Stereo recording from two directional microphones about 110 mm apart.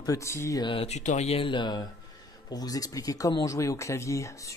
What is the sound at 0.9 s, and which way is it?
Speech, 90° left.